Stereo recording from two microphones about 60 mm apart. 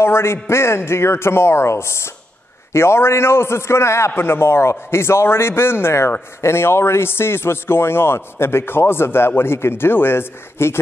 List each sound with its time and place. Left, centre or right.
0.0 s a man's voice: left